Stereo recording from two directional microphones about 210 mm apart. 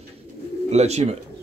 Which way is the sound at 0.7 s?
30° right (ahead or behind).